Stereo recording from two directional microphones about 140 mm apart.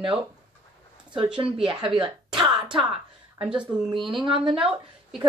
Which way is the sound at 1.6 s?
35° right (ahead or behind).